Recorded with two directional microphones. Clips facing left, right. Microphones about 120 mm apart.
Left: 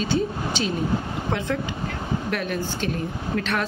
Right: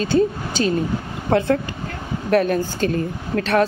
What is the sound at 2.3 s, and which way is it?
A woman's voice, 45° right (ahead or behind).